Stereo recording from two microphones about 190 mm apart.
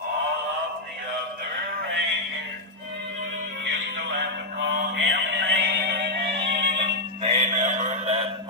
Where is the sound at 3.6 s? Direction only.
70° right (ahead or behind).